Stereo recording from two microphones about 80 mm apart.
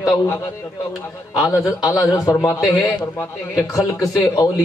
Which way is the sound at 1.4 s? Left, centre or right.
Left.